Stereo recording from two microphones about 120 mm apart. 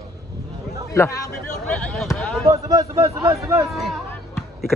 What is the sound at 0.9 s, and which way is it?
Speech, 25° left (ahead or behind).